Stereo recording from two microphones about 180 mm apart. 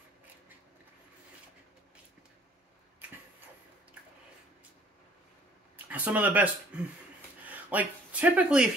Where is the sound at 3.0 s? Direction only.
10° right (ahead or behind).